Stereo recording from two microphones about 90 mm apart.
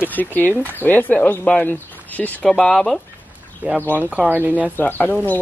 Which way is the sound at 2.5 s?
5° left (ahead or behind).